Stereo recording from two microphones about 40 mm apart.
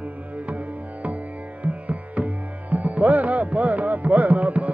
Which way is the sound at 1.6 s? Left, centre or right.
Right.